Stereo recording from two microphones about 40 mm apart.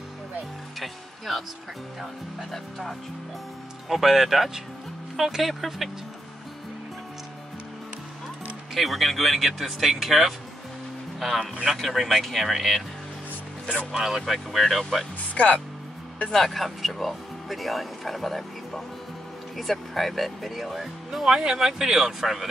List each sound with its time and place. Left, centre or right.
0.7 s music: centre
2.5 s speech: centre
8.7 s speech: centre
13.9 s speech: centre
15.3 s speech: left
16.3 s speech: centre